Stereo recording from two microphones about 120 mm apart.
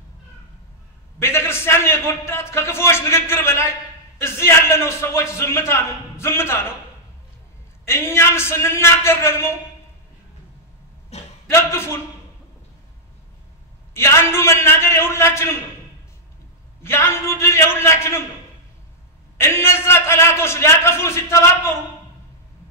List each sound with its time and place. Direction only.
1.2 s a man's voice: 20° left (ahead or behind)
7.8 s a man's voice: 20° left (ahead or behind)
11.1 s a sound: 65° left (ahead or behind)
11.4 s a man's voice: 20° left (ahead or behind)
13.9 s a man's voice: 20° left (ahead or behind)
16.8 s a man's voice: 20° left (ahead or behind)
19.3 s a man's voice: 20° left (ahead or behind)